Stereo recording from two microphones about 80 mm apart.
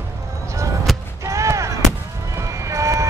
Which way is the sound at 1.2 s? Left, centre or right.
Right.